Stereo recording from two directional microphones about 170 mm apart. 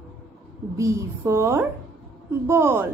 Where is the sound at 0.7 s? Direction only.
15° right (ahead or behind).